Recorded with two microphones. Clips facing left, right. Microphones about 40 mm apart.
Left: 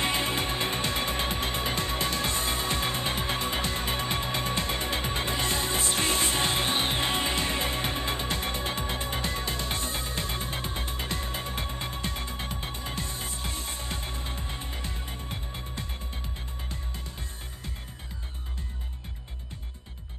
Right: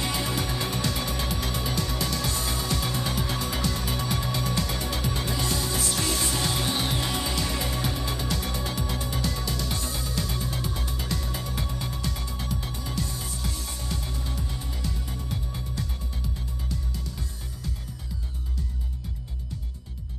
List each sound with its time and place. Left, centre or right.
0.0 s music: left